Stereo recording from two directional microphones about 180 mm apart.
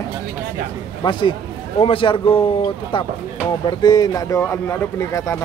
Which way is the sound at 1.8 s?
30° left (ahead or behind).